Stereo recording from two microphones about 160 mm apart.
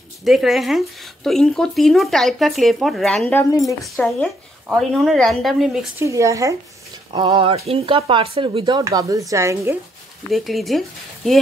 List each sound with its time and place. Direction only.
0.2 s speech: centre (ahead or behind)
3.6 s speech: centre (ahead or behind)
5.9 s speech: 20° right (ahead or behind)
7.1 s speech: 30° right (ahead or behind)
10.3 s speech: centre (ahead or behind)